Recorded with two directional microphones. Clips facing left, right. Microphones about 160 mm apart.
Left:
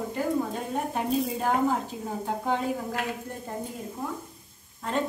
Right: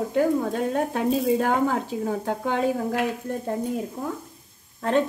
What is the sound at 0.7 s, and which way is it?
Speech, 80° right.